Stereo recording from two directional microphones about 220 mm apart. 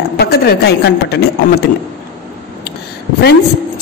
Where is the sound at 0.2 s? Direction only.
45° left (ahead or behind).